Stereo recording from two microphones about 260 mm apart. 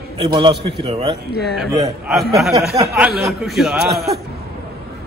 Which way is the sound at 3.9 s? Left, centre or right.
Right.